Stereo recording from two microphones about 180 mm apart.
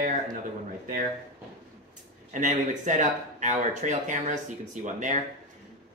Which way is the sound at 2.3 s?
45° right (ahead or behind).